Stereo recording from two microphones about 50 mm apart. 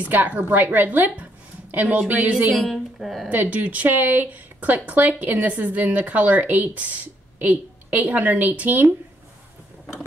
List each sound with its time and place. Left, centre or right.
0.0 s speech: right
2.7 s speech: centre
3.3 s speech: right